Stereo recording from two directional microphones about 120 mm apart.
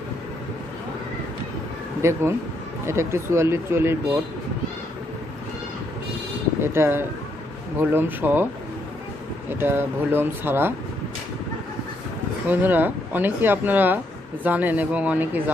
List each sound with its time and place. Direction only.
2.0 s speech: 20° right (ahead or behind)
6.6 s speech: 20° right (ahead or behind)
9.5 s speech: 20° right (ahead or behind)
12.4 s speech: 15° right (ahead or behind)